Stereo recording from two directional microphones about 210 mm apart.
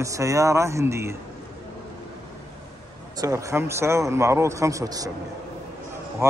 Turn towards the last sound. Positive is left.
turn(degrees=-15)  # may be behind; listen again after turning